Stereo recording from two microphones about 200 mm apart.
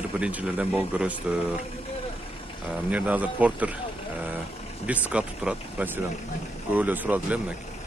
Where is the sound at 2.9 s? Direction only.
5° right (ahead or behind).